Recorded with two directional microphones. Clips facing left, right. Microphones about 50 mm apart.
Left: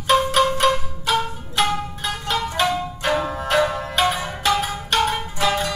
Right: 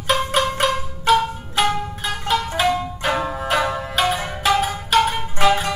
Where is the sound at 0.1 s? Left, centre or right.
Centre.